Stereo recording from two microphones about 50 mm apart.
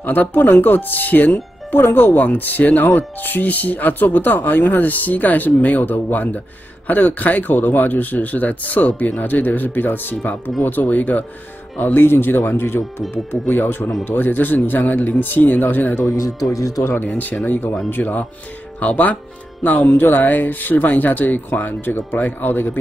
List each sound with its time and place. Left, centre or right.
0.0 s speech: left
11.8 s speech: left
16.5 s speech: left
16.9 s speech: left